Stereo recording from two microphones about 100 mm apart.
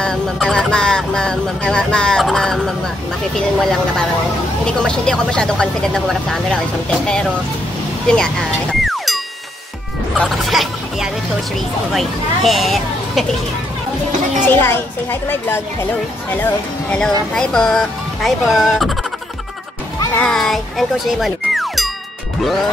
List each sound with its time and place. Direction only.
0.0 s speech: 5° left (ahead or behind)
8.8 s music: centre (ahead or behind)
10.1 s speech: centre (ahead or behind)
14.5 s a woman's voice: 25° left (ahead or behind)
16.9 s speech: 10° left (ahead or behind)
20.2 s speech: 5° left (ahead or behind)